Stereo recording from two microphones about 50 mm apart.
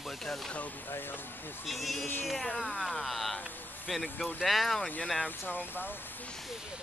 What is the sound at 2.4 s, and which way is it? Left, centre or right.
Speech, left.